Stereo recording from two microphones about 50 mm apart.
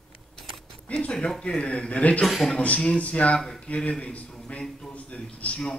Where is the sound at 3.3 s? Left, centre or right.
Centre.